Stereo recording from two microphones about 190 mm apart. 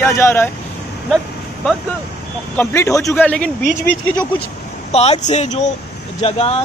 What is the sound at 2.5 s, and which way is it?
Speech, 15° left (ahead or behind).